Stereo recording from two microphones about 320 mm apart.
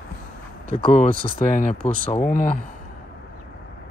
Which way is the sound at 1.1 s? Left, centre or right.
Right.